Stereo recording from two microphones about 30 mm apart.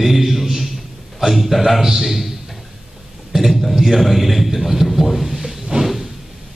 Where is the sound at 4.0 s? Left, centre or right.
Centre.